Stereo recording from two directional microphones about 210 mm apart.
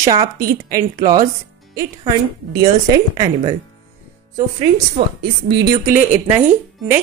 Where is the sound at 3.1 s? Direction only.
20° right (ahead or behind).